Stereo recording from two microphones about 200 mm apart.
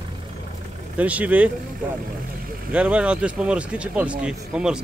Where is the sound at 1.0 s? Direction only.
5° right (ahead or behind).